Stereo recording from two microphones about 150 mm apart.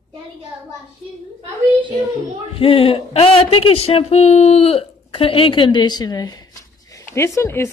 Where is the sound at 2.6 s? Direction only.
40° left (ahead or behind).